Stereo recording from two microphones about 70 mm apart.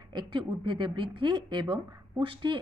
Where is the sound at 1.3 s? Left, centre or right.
Right.